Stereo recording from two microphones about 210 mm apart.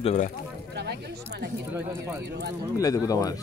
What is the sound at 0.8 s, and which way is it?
Speech, 50° right (ahead or behind).